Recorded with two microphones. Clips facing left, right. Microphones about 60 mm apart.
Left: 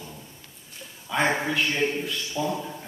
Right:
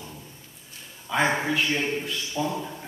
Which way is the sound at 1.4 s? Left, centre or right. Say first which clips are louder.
Even; centre.